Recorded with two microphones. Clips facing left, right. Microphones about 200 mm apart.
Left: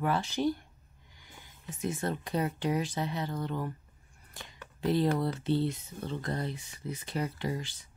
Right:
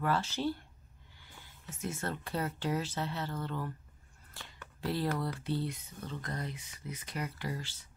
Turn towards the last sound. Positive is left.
turn(degrees=15)  # may be behind; listen again after turning